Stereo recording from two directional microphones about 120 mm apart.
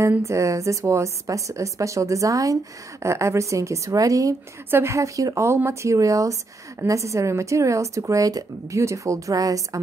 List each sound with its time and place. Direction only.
0.0 s a woman's voice: 25° right (ahead or behind)